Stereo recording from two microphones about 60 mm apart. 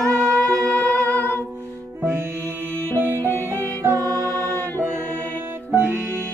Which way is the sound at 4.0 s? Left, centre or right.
Right.